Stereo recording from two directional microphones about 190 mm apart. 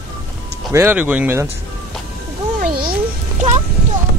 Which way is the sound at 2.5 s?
50° right (ahead or behind).